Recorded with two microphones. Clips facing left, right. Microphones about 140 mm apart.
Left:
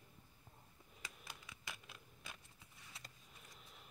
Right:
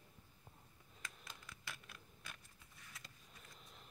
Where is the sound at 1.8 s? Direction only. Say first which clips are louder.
Even; 20° left (ahead or behind).